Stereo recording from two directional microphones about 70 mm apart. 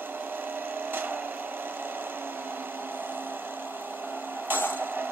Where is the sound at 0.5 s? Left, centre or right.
Right.